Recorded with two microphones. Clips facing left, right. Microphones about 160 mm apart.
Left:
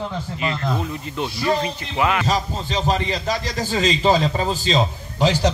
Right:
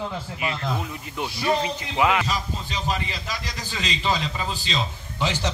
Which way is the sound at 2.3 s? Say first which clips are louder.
Left 6 dB; 40° left (ahead or behind).